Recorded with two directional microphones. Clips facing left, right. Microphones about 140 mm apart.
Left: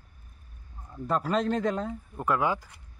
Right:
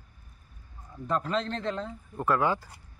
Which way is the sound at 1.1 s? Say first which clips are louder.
Left 3 dB; 10° left (ahead or behind).